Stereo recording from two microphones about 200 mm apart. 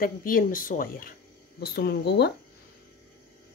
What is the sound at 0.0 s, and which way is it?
A woman's voice, 45° left (ahead or behind).